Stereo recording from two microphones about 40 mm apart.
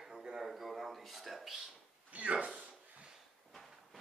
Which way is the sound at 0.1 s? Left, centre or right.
Centre.